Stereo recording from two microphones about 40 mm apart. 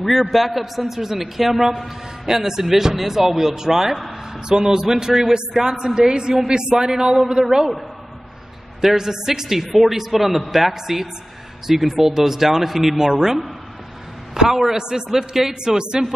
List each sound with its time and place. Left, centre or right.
0.0 s a man's voice: centre
8.8 s a man's voice: centre